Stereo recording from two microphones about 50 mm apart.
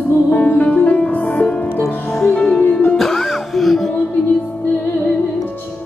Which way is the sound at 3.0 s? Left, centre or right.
Centre.